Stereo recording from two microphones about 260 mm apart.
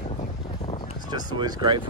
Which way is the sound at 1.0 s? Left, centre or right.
Centre.